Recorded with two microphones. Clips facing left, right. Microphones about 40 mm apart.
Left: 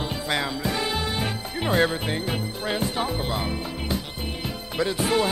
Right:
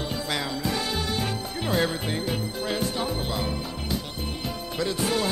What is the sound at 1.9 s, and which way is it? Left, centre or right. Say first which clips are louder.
Speech: left 1 dB; centre.